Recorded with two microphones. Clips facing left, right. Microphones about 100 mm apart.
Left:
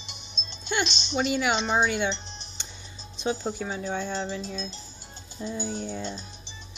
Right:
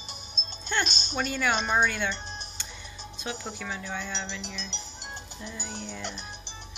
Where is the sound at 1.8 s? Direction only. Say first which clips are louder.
Left 3 dB; 20° left (ahead or behind).